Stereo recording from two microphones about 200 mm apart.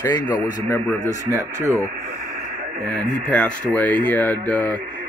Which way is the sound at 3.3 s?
5° left (ahead or behind).